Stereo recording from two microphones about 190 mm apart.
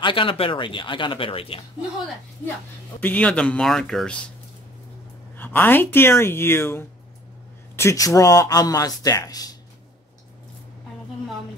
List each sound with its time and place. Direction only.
0.0 s speech: 25° left (ahead or behind)
3.0 s speech: 10° left (ahead or behind)
5.3 s speech: 10° left (ahead or behind)